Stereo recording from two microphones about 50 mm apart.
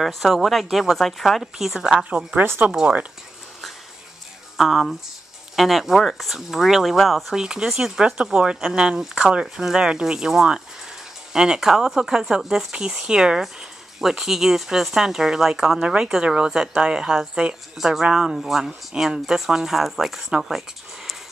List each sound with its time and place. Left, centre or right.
0.0 s speech: centre
2.7 s speech: right
4.6 s speech: centre
7.3 s speech: centre
17.7 s speech: centre